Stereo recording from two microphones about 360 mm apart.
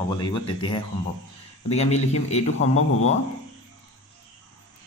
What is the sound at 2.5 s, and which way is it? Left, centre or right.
Speech, left.